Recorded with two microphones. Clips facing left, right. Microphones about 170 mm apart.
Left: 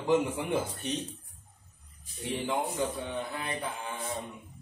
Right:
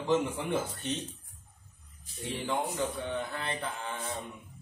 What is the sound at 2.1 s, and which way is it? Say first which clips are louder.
A man's voice: left 1 dB; 15° left (ahead or behind).